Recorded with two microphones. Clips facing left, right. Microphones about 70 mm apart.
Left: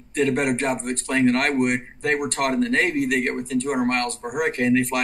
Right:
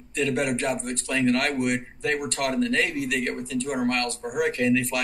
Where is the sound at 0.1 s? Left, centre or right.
Left.